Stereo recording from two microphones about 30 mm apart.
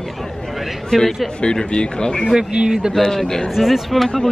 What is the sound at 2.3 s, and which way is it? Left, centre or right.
Speech, right.